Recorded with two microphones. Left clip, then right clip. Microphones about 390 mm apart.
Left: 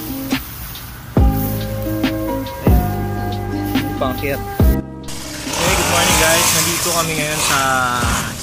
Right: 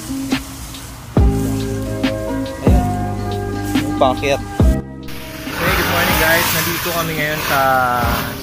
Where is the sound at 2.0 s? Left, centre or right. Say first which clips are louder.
Right 1 dB; centre.